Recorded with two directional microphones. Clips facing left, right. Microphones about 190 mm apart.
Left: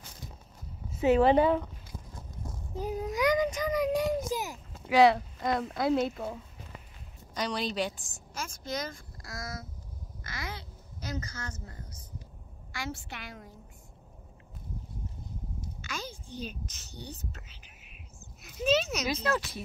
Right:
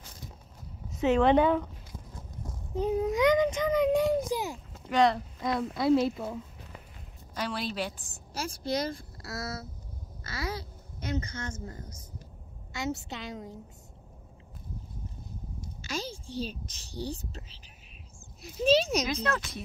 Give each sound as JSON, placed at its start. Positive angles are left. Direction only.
{"t": 1.0, "sound": "speech", "side_deg": 5}
{"t": 2.7, "sound": "a child's voice", "side_deg": -25}
{"t": 4.8, "sound": "speech", "side_deg": 5}
{"t": 8.3, "sound": "a child's voice", "side_deg": -35}
{"t": 12.7, "sound": "a child's voice", "side_deg": -25}
{"t": 16.7, "sound": "speech", "side_deg": -30}
{"t": 19.0, "sound": "speech", "side_deg": 5}